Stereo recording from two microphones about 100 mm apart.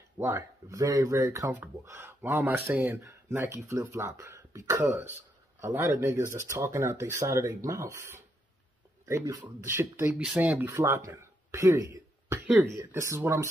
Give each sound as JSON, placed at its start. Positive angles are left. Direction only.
{"t": 0.2, "sound": "speech", "side_deg": -30}
{"t": 3.0, "sound": "speech", "side_deg": -30}
{"t": 10.7, "sound": "speech", "side_deg": -30}